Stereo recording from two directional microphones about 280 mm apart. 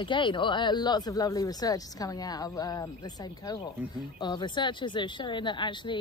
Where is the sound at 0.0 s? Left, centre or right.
Centre.